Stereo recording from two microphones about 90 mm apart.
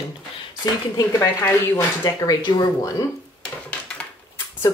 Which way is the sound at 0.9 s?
40° left (ahead or behind).